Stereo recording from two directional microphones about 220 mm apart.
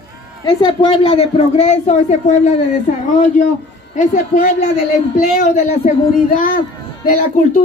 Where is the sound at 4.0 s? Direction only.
35° left (ahead or behind).